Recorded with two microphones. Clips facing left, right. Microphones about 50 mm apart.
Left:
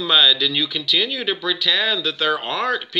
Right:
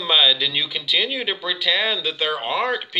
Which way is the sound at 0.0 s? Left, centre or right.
Centre.